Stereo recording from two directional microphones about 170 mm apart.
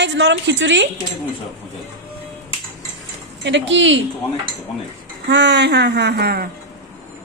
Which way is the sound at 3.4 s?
90° right.